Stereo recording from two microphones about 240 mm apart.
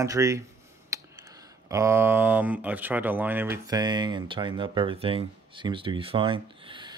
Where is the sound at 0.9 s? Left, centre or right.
Centre.